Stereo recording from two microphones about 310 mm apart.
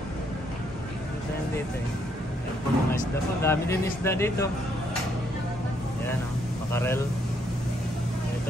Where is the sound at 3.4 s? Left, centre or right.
Centre.